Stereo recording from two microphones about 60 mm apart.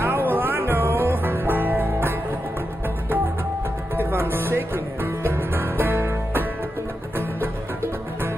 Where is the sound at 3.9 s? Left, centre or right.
Right.